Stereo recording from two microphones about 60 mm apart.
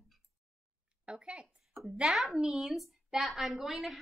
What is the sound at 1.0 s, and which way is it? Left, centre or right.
Speech, centre.